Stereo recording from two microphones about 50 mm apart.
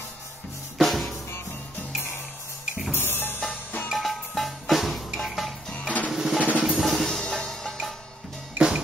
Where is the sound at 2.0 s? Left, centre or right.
Left.